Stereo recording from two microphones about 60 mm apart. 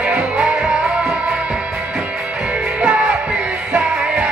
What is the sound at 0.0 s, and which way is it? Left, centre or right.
Music, centre.